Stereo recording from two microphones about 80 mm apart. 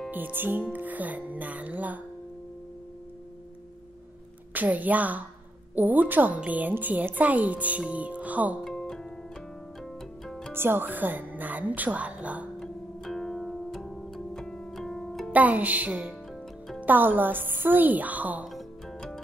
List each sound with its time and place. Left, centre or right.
0.1 s a woman's voice: right
4.6 s a woman's voice: right
7.8 s music: centre
8.6 s music: centre
10.2 s music: centre
10.5 s a woman's voice: right
12.5 s music: centre
15.3 s a woman's voice: centre
18.5 s music: centre